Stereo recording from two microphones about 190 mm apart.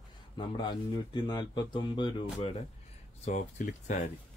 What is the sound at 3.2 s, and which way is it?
Speech, 40° left (ahead or behind).